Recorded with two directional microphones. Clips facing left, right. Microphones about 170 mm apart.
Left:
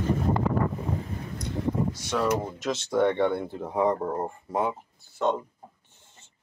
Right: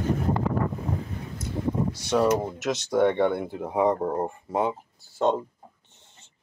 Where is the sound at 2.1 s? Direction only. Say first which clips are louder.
Right 5 dB; 25° right (ahead or behind).